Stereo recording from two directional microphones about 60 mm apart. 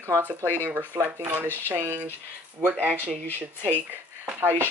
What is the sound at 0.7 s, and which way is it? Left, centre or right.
Speech, right.